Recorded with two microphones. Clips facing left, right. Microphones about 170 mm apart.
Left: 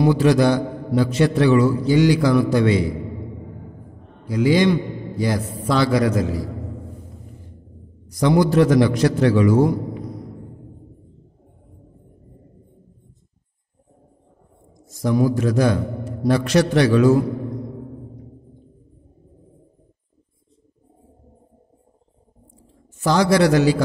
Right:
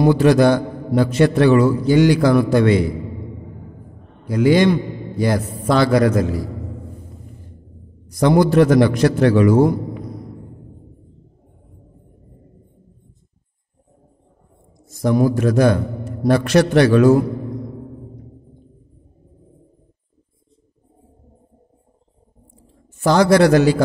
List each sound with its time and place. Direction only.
0.0 s a man's voice: 55° right (ahead or behind)
4.3 s a man's voice: 55° right (ahead or behind)
8.1 s a man's voice: 50° right (ahead or behind)
15.0 s a man's voice: 55° right (ahead or behind)
22.9 s a man's voice: 55° right (ahead or behind)